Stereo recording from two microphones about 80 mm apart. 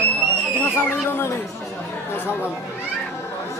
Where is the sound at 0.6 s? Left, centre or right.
Left.